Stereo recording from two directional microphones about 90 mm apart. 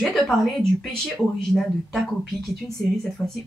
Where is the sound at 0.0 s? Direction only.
5° left (ahead or behind).